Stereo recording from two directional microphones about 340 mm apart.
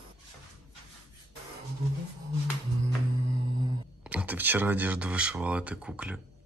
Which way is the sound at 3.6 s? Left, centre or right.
Centre.